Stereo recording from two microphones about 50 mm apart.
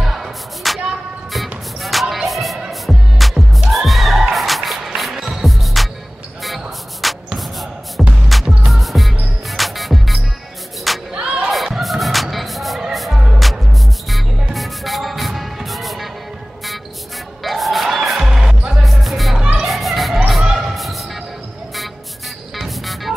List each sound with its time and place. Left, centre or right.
0.0 s a sound: centre
1.8 s music: centre
6.4 s a sound: centre
8.3 s music: centre
11.1 s a sound: centre
11.5 s music: centre
17.4 s music: centre
18.8 s music: centre
19.6 s children playing: centre
20.4 s a sound: centre
20.7 s music: centre
22.6 s music: centre